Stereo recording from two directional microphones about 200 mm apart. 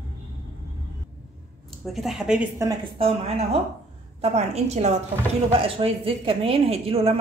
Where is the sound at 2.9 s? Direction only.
30° right (ahead or behind).